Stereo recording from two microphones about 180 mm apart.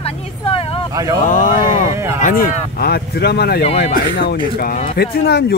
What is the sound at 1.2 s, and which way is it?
Speech, 45° left (ahead or behind).